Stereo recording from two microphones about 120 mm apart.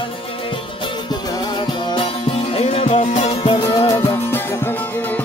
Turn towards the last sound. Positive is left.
turn(degrees=15)  # may be behind; listen again after turning